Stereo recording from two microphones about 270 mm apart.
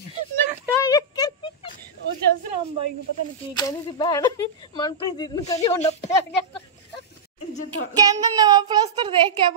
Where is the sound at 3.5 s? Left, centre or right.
Centre.